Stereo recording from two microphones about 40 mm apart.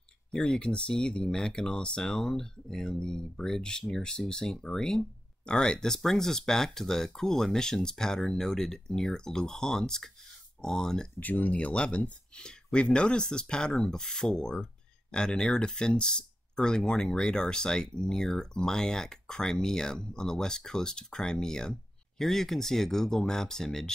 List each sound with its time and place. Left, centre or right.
0.3 s speech: centre
11.1 s speech: left
11.5 s speech: left